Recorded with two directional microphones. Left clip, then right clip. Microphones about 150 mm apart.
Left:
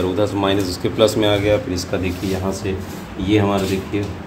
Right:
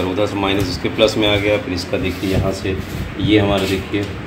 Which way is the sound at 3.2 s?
5° left (ahead or behind).